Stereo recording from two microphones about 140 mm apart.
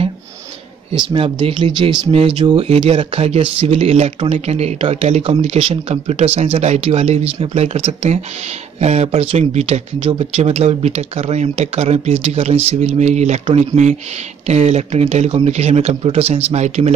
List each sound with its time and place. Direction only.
0.9 s speech: 40° right (ahead or behind)